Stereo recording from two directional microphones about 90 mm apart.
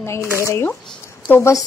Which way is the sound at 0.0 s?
30° left (ahead or behind).